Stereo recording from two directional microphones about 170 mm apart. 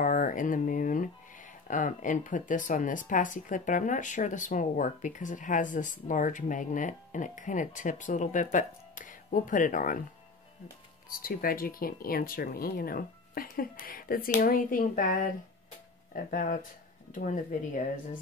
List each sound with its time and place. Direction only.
0.0 s a sound: 50° left (ahead or behind)
1.7 s speech: 50° left (ahead or behind)
11.1 s speech: 55° left (ahead or behind)